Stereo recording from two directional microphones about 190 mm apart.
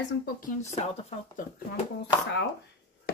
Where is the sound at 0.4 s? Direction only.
35° left (ahead or behind).